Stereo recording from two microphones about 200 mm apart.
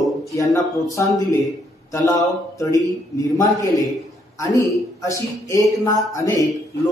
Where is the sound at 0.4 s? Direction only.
15° left (ahead or behind).